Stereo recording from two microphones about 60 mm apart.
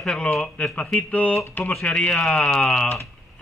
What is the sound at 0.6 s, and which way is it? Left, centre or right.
Speech, left.